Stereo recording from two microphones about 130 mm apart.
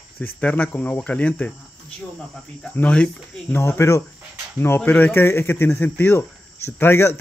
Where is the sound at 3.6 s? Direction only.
20° left (ahead or behind).